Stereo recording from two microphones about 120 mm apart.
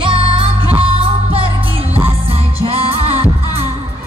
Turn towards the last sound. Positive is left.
turn(degrees=-55)  # may be behind; listen again after turning